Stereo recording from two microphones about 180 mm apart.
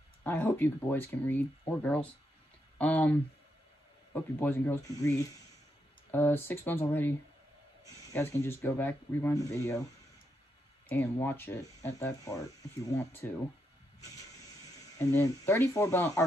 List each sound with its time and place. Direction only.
0.2 s speech: 10° left (ahead or behind)
10.9 s speech: 10° left (ahead or behind)
15.0 s speech: 15° left (ahead or behind)